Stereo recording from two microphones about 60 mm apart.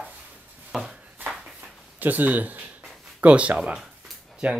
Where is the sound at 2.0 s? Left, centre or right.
Right.